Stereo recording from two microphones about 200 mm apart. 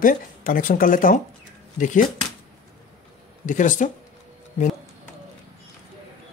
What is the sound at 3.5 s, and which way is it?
Speech, 40° left (ahead or behind).